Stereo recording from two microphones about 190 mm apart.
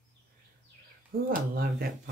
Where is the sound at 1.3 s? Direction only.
55° right (ahead or behind).